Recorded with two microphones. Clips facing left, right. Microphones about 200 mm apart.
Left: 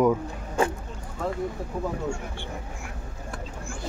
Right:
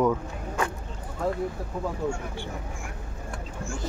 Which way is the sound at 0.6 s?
30° left (ahead or behind).